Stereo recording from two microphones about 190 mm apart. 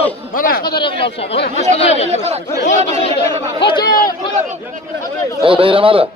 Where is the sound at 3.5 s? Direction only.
25° left (ahead or behind).